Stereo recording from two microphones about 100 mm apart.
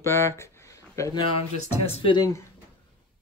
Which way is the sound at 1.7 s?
90° left.